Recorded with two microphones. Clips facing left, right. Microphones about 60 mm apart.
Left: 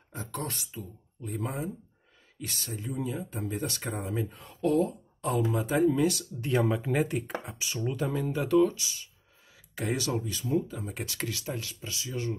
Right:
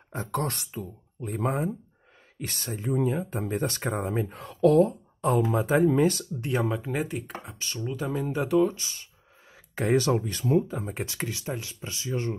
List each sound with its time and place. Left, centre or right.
0.1 s speech: right
4.3 s speech: right
4.8 s speech: right
6.6 s speech: centre
7.5 s speech: centre
7.9 s speech: centre
8.7 s speech: right
11.0 s speech: right